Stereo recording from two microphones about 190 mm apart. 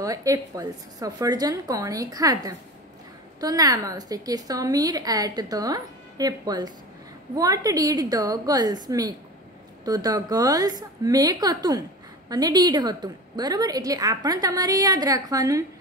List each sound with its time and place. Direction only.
0.0 s a woman's voice: 15° right (ahead or behind)